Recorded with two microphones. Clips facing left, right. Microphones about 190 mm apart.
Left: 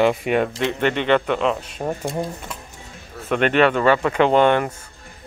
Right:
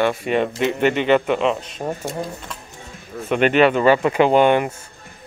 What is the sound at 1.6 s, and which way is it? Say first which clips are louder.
Speech: even; 10° left (ahead or behind).